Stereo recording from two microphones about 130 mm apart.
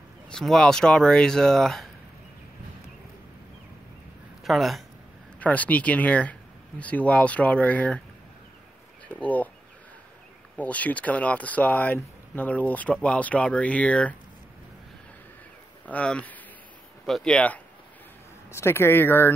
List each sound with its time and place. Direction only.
0.3 s speech: 5° left (ahead or behind)
4.5 s speech: centre (ahead or behind)
5.4 s speech: 10° left (ahead or behind)
9.1 s speech: 10° left (ahead or behind)
10.6 s speech: 10° left (ahead or behind)
15.8 s speech: 10° left (ahead or behind)
18.5 s speech: 20° left (ahead or behind)